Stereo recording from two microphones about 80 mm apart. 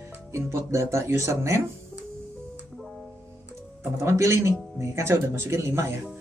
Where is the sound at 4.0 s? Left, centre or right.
Right.